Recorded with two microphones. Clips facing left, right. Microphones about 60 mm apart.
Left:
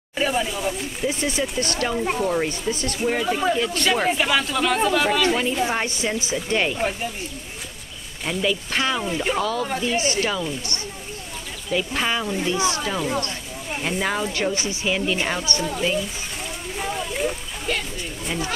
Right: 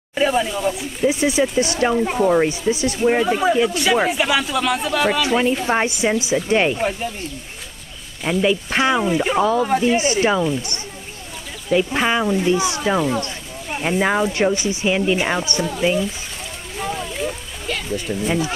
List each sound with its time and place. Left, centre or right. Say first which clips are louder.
0.1 s speech: right 5 dB; centre
1.0 s speech: right 7 dB; centre
5.8 s speech: right 6 dB; centre
8.3 s speech: right 5 dB; right
16.7 s a sound: right 2 dB; centre